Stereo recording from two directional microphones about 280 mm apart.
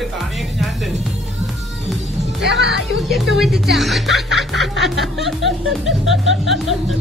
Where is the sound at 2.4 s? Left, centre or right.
Right.